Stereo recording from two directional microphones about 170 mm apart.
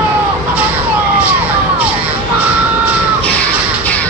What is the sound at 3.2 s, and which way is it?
Music, 10° left (ahead or behind).